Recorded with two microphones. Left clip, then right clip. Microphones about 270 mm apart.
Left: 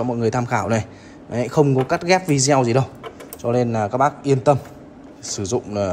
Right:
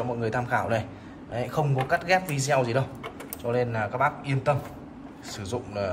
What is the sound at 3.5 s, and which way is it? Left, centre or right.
Speech, centre.